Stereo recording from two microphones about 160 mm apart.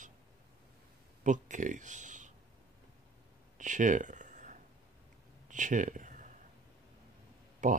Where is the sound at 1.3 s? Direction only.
50° right (ahead or behind).